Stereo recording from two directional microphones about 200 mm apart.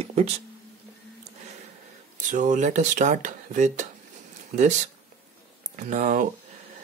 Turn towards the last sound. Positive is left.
turn(degrees=-40)  # may be behind; listen again after turning